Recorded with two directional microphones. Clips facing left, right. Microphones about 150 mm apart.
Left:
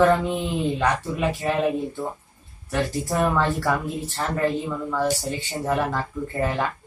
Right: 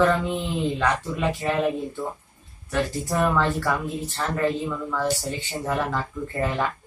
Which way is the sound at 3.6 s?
Centre (ahead or behind).